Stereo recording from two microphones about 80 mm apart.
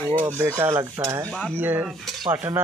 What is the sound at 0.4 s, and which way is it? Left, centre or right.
Rub, right.